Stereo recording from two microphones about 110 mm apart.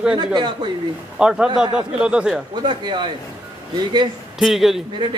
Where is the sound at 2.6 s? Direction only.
45° right (ahead or behind).